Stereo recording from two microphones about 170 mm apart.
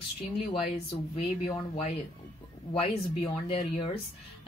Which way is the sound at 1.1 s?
40° left (ahead or behind).